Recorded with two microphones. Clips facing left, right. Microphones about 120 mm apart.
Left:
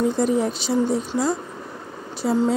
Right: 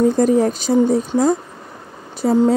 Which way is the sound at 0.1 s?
45° right (ahead or behind).